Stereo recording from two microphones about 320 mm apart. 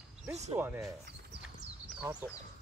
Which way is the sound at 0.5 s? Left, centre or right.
Centre.